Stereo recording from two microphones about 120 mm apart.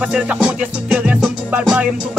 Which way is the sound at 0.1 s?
5° right (ahead or behind).